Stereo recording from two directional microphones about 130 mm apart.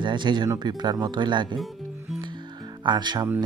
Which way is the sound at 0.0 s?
35° right (ahead or behind).